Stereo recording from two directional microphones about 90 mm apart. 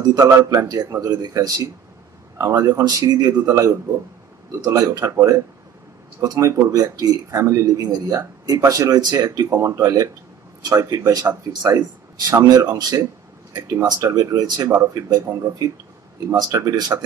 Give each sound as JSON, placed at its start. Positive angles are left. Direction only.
{"t": 0.0, "sound": "speech", "side_deg": -40}
{"t": 16.4, "sound": "speech", "side_deg": -35}